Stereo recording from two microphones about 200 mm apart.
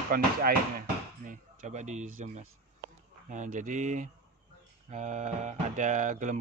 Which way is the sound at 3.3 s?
40° right (ahead or behind).